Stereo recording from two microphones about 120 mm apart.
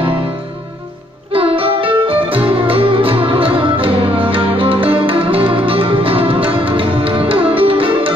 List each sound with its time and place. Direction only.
1.3 s music: 50° right (ahead or behind)